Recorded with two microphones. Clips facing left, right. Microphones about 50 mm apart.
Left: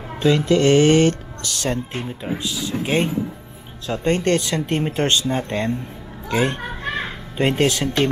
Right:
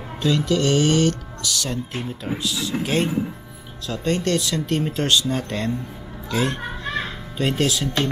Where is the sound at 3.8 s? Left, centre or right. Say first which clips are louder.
Left 3 dB; left.